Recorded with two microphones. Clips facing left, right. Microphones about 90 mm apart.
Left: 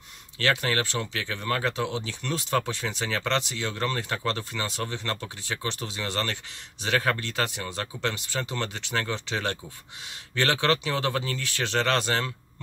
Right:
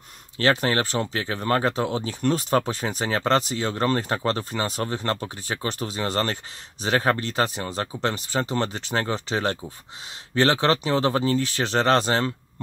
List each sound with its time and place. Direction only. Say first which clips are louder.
0.4 s speech: right 4 dB; 40° right (ahead or behind)